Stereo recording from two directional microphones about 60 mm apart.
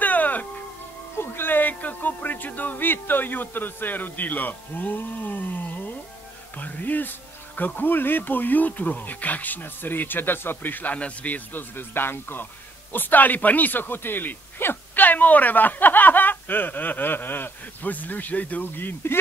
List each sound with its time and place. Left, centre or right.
0.0 s music: left
1.1 s speech: left